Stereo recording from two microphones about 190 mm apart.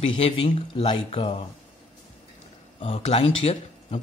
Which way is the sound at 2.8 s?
30° left (ahead or behind).